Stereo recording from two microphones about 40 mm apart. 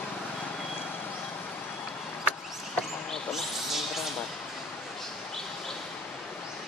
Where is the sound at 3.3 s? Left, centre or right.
Centre.